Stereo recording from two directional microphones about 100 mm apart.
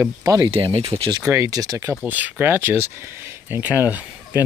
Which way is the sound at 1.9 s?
15° right (ahead or behind).